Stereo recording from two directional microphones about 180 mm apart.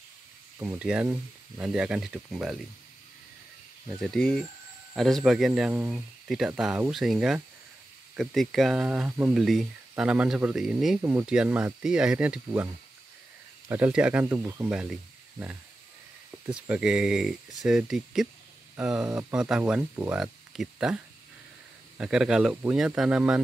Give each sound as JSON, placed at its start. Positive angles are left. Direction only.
{"t": 0.6, "sound": "speech", "side_deg": -10}
{"t": 4.0, "sound": "speech", "side_deg": 5}
{"t": 13.7, "sound": "speech", "side_deg": -10}